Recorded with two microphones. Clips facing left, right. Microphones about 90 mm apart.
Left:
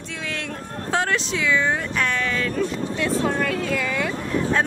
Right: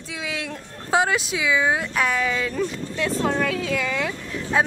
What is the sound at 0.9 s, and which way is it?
Speech, 10° right (ahead or behind).